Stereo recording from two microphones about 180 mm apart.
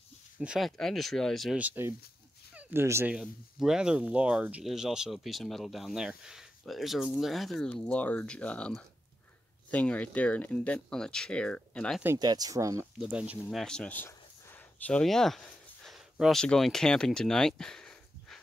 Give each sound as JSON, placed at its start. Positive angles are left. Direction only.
{"t": 0.4, "sound": "speech", "side_deg": 0}
{"t": 3.2, "sound": "speech", "side_deg": 0}
{"t": 12.2, "sound": "speech", "side_deg": -20}
{"t": 13.0, "sound": "speech", "side_deg": -5}